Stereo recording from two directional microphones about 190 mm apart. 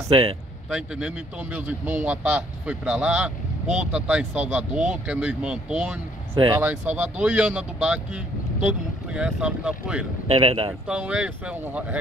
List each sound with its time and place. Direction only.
0.1 s speech: 30° right (ahead or behind)
0.7 s speech: 5° right (ahead or behind)
10.2 s a man's voice: 30° right (ahead or behind)
10.9 s speech: 5° right (ahead or behind)